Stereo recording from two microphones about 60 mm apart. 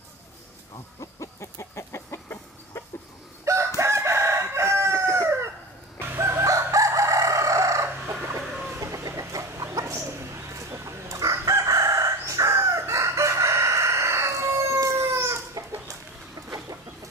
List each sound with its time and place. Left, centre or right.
1.2 s chicken: left
3.4 s chicken: right
5.9 s crowing: right
8.1 s chicken: right
8.7 s chicken: right
9.8 s bird: right
10.7 s crow: right
11.4 s chicken: right